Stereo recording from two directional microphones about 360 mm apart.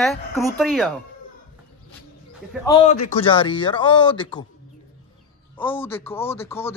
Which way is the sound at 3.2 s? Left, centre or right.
Centre.